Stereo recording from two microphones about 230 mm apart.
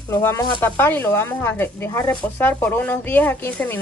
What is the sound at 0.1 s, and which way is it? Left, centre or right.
Speech, centre.